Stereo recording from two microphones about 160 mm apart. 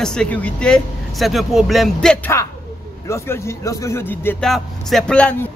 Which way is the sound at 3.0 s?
15° left (ahead or behind).